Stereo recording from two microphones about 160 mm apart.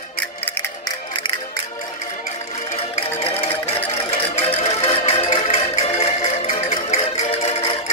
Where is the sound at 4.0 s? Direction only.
35° left (ahead or behind).